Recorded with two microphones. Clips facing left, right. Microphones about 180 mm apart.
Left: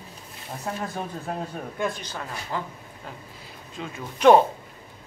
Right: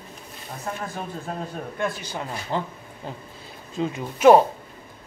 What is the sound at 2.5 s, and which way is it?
Speech, 25° right (ahead or behind).